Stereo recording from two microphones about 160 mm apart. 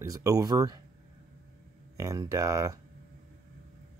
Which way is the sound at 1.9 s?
20° right (ahead or behind).